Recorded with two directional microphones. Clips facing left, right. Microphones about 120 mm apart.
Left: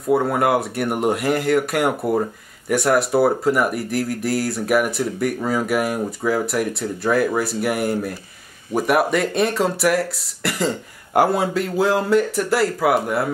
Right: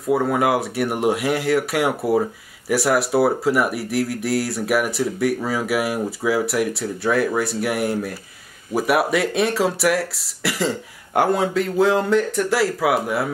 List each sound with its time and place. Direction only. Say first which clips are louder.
0.0 s speech: left 1 dB; centre (ahead or behind)